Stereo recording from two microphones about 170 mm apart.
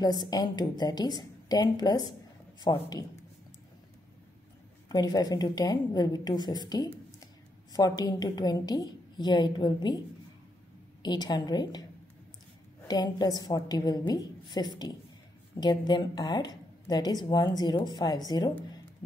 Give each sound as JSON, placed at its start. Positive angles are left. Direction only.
{"t": 0.0, "sound": "a woman's voice", "side_deg": 25}
{"t": 4.8, "sound": "a woman's voice", "side_deg": 20}
{"t": 11.0, "sound": "a woman's voice", "side_deg": 25}
{"t": 12.8, "sound": "a woman's voice", "side_deg": 25}